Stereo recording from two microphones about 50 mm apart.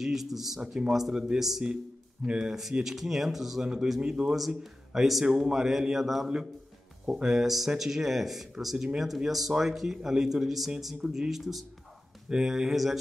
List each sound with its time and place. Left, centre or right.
0.0 s speech: centre
0.6 s a man's voice: centre
8.7 s speech: centre
9.0 s speech: centre